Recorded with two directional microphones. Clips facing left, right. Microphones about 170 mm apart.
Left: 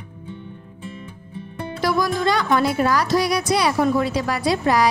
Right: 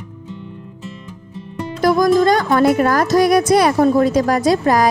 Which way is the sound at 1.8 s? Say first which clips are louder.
Right 8 dB; 45° right (ahead or behind).